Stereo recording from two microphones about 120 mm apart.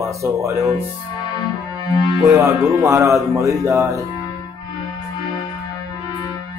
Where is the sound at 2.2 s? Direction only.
25° right (ahead or behind).